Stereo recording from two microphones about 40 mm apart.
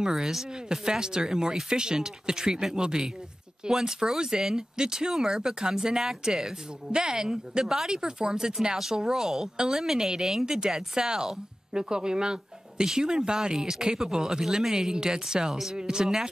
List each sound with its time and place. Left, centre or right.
0.1 s speech: centre